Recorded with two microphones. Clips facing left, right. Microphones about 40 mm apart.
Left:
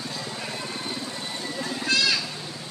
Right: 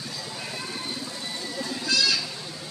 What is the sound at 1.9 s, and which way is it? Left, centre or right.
Goat, left.